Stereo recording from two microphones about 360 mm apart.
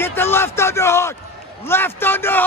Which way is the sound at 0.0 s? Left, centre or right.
Centre.